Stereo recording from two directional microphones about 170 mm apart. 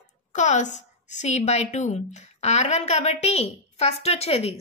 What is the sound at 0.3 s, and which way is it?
A woman's voice, 45° left (ahead or behind).